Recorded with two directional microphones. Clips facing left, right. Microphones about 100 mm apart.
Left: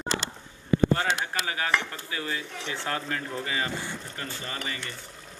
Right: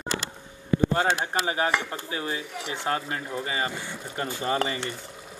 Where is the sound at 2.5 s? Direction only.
15° right (ahead or behind).